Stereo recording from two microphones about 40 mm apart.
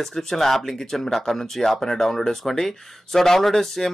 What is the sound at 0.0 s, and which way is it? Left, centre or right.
Speech, centre.